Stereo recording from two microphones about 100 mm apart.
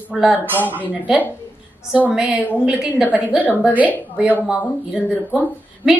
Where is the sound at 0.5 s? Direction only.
15° left (ahead or behind).